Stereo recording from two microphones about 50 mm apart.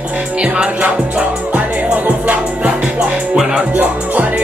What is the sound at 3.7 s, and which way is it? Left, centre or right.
Music, right.